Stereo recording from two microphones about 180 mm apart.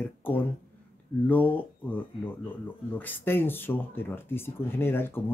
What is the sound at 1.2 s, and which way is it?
Speech, 10° left (ahead or behind).